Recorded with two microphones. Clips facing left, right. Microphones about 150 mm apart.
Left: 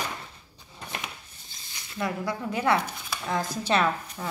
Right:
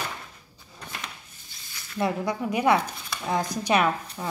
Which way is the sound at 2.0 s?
20° right (ahead or behind).